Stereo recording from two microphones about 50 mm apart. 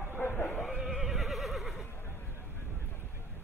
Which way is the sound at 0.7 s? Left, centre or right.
Centre.